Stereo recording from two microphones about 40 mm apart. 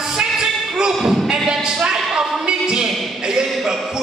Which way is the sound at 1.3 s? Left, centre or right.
Centre.